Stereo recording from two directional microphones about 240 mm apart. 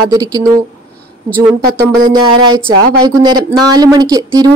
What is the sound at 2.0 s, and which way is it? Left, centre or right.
Speech, centre.